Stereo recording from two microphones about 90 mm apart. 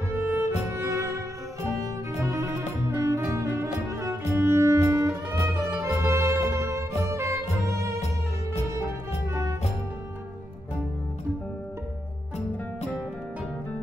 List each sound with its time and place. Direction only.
0.3 s music: 30° right (ahead or behind)